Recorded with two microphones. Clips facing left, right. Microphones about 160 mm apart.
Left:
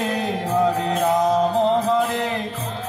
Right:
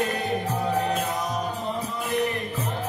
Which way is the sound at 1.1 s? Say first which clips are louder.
Left 11 dB; 90° left.